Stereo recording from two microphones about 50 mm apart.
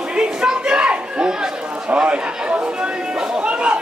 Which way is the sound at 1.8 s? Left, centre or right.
Centre.